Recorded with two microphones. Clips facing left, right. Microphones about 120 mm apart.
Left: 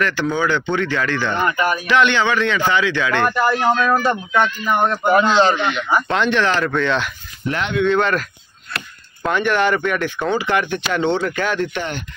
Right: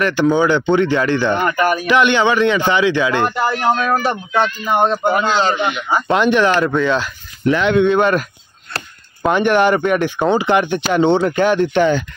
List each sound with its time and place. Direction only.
0.0 s speech: 15° right (ahead or behind)
5.1 s speech: 5° right (ahead or behind); by 11.6 s 20° right (ahead or behind)